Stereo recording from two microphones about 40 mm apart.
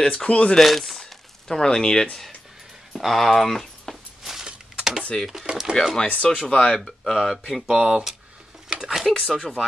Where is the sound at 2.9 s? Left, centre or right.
Centre.